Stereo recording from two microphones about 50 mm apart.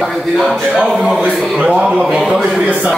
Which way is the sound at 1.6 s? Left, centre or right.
Right.